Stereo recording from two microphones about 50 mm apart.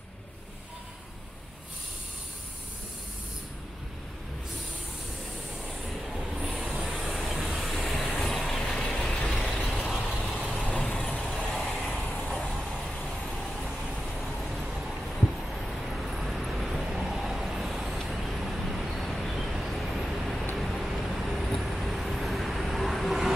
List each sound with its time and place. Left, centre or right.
5.9 s train: centre
8.1 s vehicle: centre
8.4 s vehicle: centre
9.6 s vehicle: centre
10.6 s vehicle: left
11.1 s vehicle: centre